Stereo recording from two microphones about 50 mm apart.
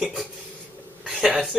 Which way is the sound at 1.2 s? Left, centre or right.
Centre.